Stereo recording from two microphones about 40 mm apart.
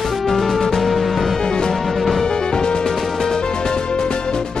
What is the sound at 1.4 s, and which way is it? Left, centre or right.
Music, centre.